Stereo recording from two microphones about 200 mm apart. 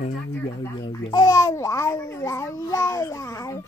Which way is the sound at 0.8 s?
20° left (ahead or behind).